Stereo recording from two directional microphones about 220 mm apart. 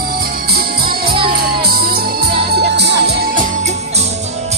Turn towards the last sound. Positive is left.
turn(degrees=-50)  # may be behind; listen again after turning